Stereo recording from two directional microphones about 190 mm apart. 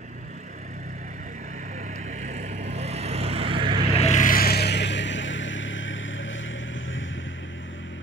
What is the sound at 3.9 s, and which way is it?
Vehicle, 35° left (ahead or behind).